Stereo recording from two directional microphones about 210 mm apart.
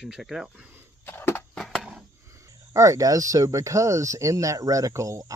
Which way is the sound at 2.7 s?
15° right (ahead or behind).